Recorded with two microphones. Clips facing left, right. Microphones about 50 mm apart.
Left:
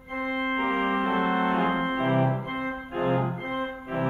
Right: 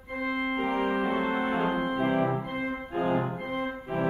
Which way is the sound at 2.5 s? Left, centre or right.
Left.